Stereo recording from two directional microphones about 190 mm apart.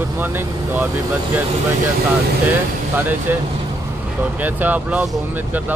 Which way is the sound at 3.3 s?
10° right (ahead or behind).